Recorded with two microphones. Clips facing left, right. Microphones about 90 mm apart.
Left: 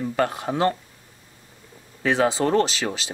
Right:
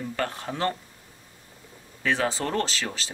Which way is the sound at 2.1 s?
15° left (ahead or behind).